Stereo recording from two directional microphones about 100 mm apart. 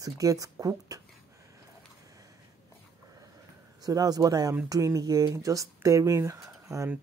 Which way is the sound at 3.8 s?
40° right (ahead or behind).